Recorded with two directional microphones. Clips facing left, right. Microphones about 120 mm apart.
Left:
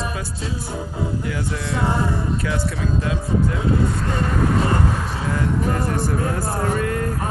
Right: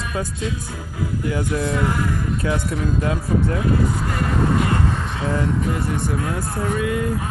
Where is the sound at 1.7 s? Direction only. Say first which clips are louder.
Even; 30° left (ahead or behind).